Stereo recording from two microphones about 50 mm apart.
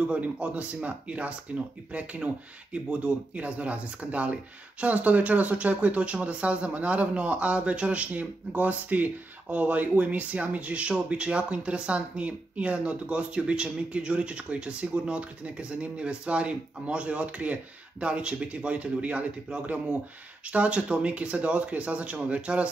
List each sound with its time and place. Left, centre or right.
0.0 s speech: right